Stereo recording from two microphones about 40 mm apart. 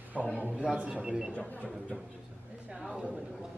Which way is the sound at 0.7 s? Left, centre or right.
Right.